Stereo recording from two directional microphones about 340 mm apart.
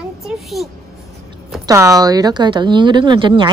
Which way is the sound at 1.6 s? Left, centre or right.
Centre.